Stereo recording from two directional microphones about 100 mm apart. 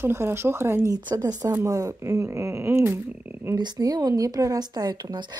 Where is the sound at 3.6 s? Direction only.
40° right (ahead or behind).